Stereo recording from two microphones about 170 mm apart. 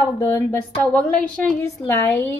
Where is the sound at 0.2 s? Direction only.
15° left (ahead or behind).